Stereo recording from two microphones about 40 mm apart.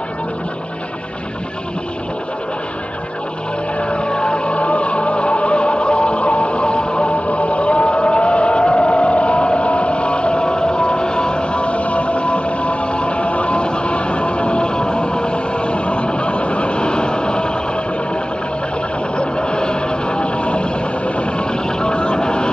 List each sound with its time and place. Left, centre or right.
3.9 s music: left
19.1 s music: left
21.2 s vehicle: left